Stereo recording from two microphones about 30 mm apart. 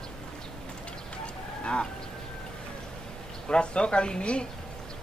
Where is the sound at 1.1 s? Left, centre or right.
Left.